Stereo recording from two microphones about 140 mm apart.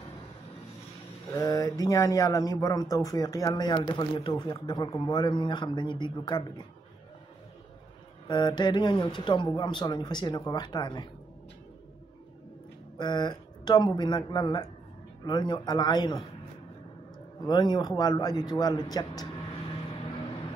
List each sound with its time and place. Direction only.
1.3 s speech: 25° left (ahead or behind)
8.3 s speech: 30° left (ahead or behind)
12.9 s speech: 30° left (ahead or behind)
17.4 s speech: 30° left (ahead or behind)